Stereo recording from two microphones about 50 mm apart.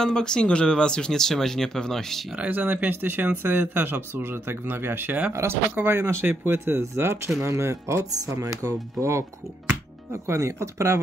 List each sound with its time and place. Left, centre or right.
0.0 s speech: centre
2.3 s speech: right
5.3 s speech: right
5.9 s speech: right
6.8 s speech: right
10.2 s speech: right